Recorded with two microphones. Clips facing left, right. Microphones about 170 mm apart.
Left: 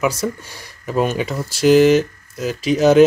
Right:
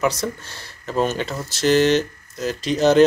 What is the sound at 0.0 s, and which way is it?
Speech, 10° left (ahead or behind).